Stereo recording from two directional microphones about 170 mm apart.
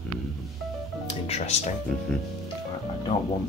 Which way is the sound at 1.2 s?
40° left (ahead or behind).